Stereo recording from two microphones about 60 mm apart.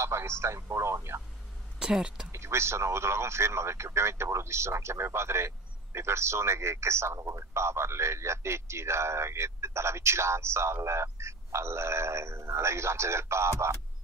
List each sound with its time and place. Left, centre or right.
0.0 s a man's voice: right
1.8 s speech: centre
2.3 s a man's voice: right